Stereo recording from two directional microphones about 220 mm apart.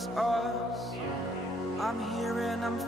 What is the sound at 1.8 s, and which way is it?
Music, centre (ahead or behind).